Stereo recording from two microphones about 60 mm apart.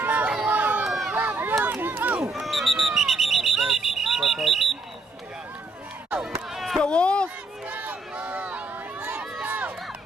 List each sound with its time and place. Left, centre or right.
0.0 s run: right
0.8 s run: centre
1.1 s a sound: right
1.6 s run: right
2.4 s smoke detector: centre
6.2 s run: centre
6.8 s a sound: centre
7.6 s a sound: right
9.5 s run: right